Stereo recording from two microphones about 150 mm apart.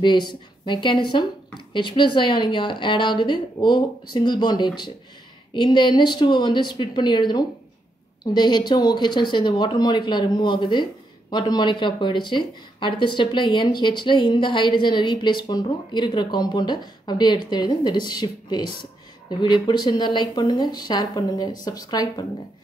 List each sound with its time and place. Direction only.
0.0 s a woman's voice: 30° left (ahead or behind)